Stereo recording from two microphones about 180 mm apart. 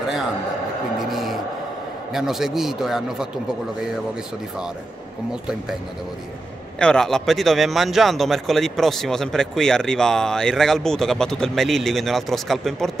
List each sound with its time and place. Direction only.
1.0 s music: centre (ahead or behind)
2.1 s speech: centre (ahead or behind)
5.3 s speech: 5° right (ahead or behind)
6.8 s speech: 5° left (ahead or behind)